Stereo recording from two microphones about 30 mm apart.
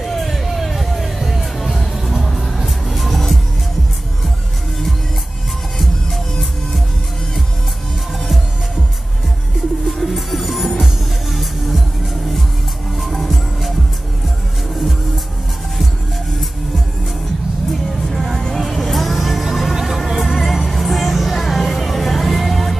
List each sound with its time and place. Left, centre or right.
0.0 s hubbub: centre
0.5 s music: centre
5.8 s music: centre
9.8 s music: centre
12.9 s music: centre
17.6 s vehicle: centre
18.9 s music: centre
20.3 s music: centre